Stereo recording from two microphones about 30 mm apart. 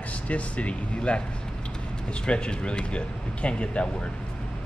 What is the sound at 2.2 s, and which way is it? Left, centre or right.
Speech, left.